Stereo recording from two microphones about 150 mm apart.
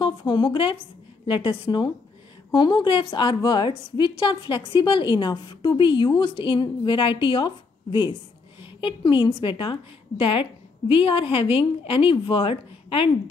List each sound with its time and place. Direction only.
0.0 s a woman's voice: 30° left (ahead or behind)